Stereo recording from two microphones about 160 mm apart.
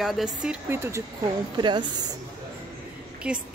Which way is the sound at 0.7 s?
15° right (ahead or behind).